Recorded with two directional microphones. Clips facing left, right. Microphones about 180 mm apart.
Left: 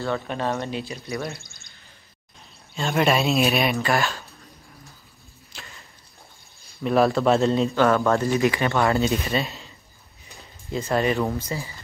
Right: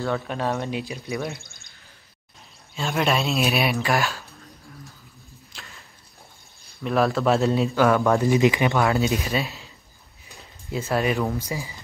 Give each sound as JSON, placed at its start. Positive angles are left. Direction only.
{"t": 0.0, "sound": "speech", "side_deg": -5}
{"t": 2.7, "sound": "speech", "side_deg": 0}
{"t": 5.5, "sound": "arrow", "side_deg": 0}
{"t": 6.8, "sound": "speech", "side_deg": 0}
{"t": 8.2, "sound": "speech", "side_deg": -15}
{"t": 8.7, "sound": "speech", "side_deg": 0}
{"t": 10.2, "sound": "a sound", "side_deg": 0}
{"t": 10.9, "sound": "speech", "side_deg": -5}
{"t": 11.3, "sound": "speech", "side_deg": -15}